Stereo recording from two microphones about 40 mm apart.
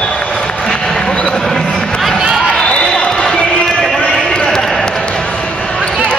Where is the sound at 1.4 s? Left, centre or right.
Centre.